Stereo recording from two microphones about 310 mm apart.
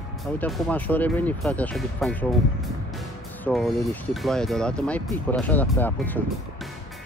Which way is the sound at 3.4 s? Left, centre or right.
Centre.